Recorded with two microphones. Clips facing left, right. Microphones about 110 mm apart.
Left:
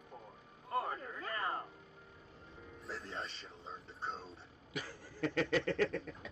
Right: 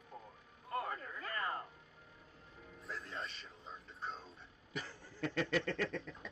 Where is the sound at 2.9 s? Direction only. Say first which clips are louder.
Left 1 dB; 30° left (ahead or behind).